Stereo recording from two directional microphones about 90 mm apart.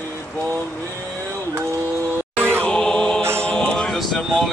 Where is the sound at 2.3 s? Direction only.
25° right (ahead or behind).